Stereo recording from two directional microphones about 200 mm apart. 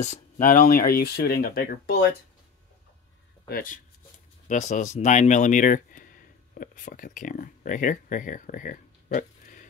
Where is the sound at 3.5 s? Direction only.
45° left (ahead or behind).